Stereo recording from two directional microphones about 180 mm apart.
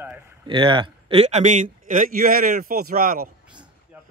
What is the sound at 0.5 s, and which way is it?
A man's voice, 25° right (ahead or behind).